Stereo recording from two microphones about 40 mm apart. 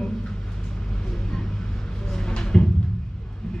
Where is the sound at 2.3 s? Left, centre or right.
Centre.